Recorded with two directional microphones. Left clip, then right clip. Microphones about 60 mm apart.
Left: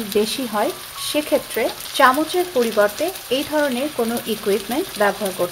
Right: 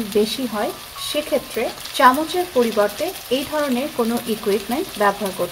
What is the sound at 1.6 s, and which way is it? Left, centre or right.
Frying, left.